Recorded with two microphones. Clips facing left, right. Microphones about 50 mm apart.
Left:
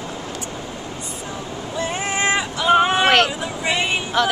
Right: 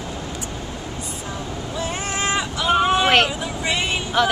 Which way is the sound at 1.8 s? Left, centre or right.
Centre.